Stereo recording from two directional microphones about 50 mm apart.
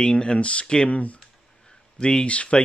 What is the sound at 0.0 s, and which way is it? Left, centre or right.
Speech, centre.